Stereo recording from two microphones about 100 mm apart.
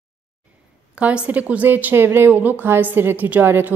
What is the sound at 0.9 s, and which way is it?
A woman's voice, 10° right (ahead or behind).